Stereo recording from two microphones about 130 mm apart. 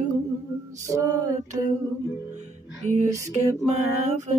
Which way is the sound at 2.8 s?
65° right (ahead or behind).